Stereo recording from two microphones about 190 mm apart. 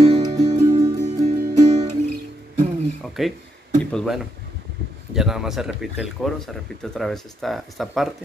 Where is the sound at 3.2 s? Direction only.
Centre (ahead or behind).